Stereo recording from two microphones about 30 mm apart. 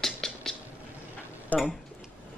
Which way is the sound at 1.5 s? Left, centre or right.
Left.